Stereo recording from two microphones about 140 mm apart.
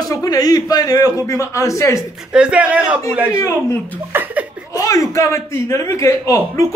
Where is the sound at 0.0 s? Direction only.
25° left (ahead or behind).